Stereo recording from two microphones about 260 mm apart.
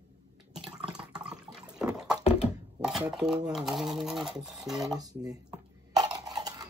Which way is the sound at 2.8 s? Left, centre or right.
Centre.